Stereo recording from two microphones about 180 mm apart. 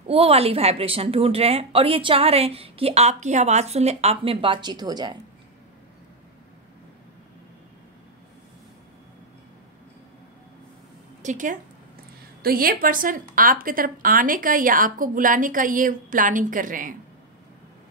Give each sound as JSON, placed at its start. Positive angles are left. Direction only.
{"t": 0.0, "sound": "a woman's voice", "side_deg": -35}
{"t": 11.2, "sound": "a woman's voice", "side_deg": -45}
{"t": 12.4, "sound": "a woman's voice", "side_deg": -55}